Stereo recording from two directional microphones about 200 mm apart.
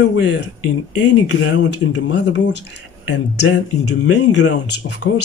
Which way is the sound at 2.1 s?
60° left (ahead or behind).